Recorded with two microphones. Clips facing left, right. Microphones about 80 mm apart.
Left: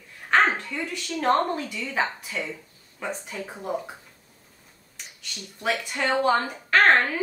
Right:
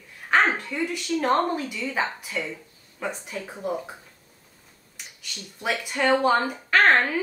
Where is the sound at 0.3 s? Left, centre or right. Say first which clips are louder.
Even; centre.